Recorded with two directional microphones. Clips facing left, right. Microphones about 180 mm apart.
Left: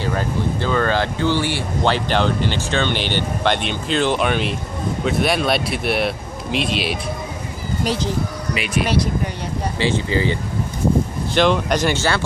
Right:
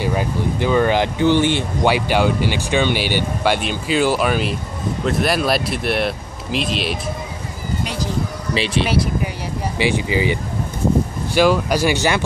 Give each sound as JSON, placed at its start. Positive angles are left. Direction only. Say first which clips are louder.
{"t": 0.0, "sound": "speech", "louder": "right 1 dB", "side_deg": -10}
{"t": 8.5, "sound": "speech", "louder": "right 3 dB", "side_deg": -30}
{"t": 9.8, "sound": "speech", "louder": "right 1 dB", "side_deg": -15}